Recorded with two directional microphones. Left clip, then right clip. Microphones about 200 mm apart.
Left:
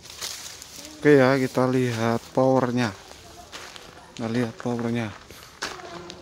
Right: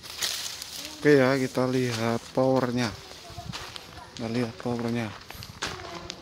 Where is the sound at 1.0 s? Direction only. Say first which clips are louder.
Left 3 dB; 15° left (ahead or behind).